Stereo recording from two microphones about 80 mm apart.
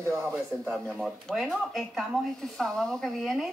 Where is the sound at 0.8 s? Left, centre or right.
Centre.